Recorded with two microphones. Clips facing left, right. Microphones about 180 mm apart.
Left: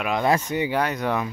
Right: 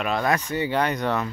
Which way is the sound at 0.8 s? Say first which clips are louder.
Even; 5° left (ahead or behind).